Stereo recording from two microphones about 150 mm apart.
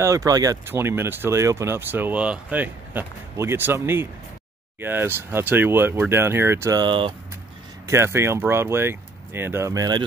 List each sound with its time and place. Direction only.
0.0 s speech: 20° right (ahead or behind)
7.8 s speech: 20° right (ahead or behind)